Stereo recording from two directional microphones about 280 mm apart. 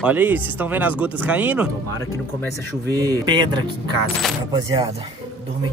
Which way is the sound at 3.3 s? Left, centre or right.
Centre.